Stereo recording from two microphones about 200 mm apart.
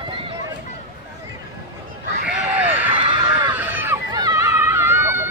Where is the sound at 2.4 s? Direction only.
10° right (ahead or behind).